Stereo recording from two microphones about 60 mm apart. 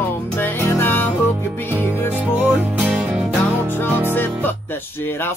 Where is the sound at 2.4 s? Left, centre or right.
Centre.